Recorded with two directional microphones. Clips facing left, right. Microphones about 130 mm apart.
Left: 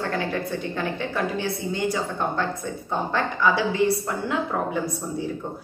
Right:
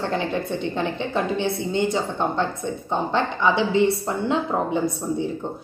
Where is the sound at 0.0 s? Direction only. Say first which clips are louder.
Right 2 dB; 20° right (ahead or behind).